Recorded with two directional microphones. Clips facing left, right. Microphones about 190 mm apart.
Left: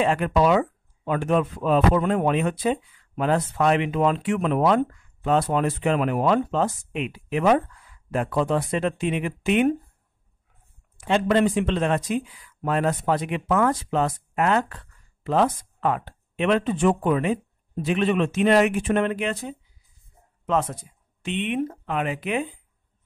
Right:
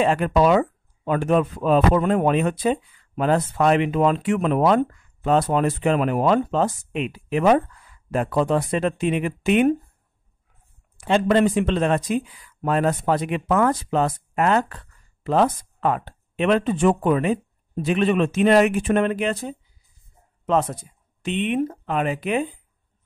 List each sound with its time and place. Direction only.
0.0 s speech: 35° right (ahead or behind)
11.0 s speech: 35° right (ahead or behind)
21.2 s speech: 40° right (ahead or behind)